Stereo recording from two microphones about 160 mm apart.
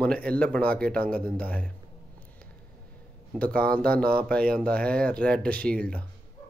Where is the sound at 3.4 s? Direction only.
10° left (ahead or behind).